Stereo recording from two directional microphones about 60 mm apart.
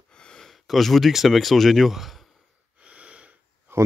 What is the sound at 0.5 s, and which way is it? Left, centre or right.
Speech, centre.